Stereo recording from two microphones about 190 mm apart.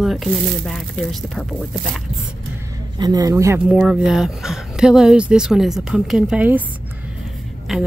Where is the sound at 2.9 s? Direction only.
20° right (ahead or behind).